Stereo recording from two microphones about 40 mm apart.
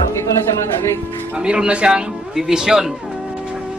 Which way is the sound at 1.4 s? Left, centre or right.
Right.